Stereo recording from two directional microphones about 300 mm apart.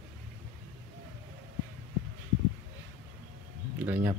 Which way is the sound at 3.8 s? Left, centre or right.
Centre.